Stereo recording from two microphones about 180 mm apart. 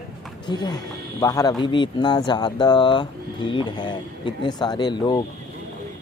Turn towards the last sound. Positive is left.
turn(degrees=25)  # may be behind; listen again after turning